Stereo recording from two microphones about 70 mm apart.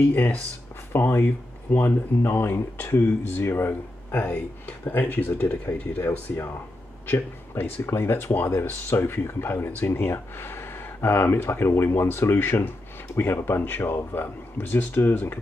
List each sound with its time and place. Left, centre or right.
0.0 s speech: left